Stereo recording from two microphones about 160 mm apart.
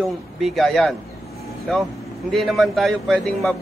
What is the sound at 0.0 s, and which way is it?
A man's voice, centre (ahead or behind).